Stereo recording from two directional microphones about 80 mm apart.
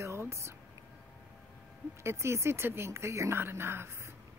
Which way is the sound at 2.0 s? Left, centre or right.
Right.